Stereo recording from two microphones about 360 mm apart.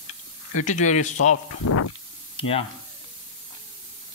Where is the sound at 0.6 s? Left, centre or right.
Centre.